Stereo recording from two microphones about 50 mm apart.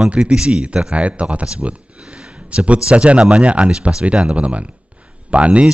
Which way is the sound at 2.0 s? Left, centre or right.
Centre.